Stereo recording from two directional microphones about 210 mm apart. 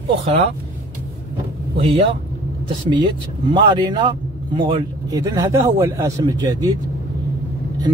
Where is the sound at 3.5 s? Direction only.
20° right (ahead or behind).